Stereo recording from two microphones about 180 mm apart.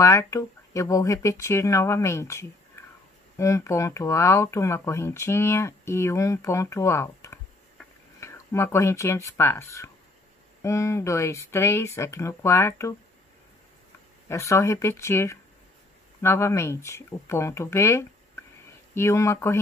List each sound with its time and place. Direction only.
0.0 s speech: 15° left (ahead or behind)
14.3 s speech: 15° left (ahead or behind)